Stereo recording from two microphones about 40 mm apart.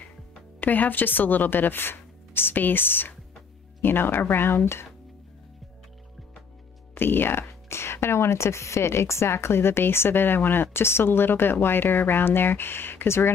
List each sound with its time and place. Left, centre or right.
0.6 s speech: left
7.0 s speech: left